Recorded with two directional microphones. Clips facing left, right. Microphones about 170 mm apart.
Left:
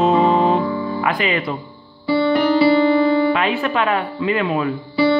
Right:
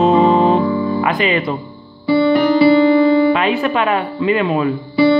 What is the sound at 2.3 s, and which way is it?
Music, 15° right (ahead or behind).